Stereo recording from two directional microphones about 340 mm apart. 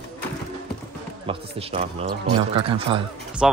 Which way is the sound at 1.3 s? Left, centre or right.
Centre.